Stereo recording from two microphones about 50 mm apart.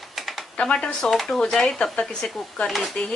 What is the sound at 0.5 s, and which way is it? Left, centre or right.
Speech, left.